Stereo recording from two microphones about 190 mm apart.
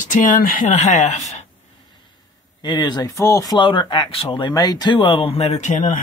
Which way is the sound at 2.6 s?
20° left (ahead or behind).